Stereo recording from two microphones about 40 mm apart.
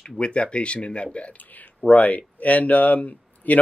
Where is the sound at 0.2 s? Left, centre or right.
Left.